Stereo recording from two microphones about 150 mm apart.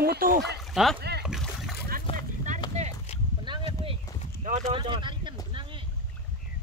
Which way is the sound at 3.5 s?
30° right (ahead or behind).